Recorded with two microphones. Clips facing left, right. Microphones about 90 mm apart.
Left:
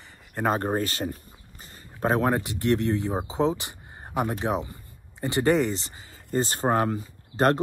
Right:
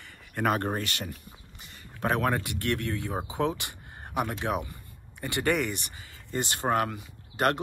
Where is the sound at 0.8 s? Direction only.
35° left (ahead or behind).